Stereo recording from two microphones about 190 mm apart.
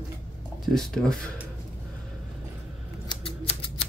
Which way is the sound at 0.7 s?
5° left (ahead or behind).